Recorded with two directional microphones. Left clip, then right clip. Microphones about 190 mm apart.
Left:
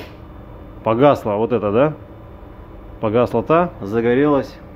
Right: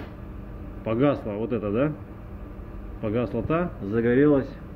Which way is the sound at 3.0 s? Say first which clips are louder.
Left 11 dB; 25° left (ahead or behind).